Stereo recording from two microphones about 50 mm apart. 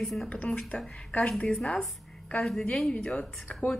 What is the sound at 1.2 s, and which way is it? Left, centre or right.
Speech, centre.